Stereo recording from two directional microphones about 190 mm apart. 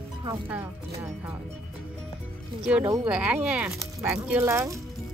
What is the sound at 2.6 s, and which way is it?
Speech, 5° right (ahead or behind).